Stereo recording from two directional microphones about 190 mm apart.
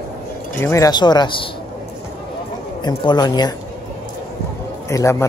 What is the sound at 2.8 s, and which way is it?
Speech, 25° left (ahead or behind).